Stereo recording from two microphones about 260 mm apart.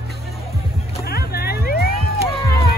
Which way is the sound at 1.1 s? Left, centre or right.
Left.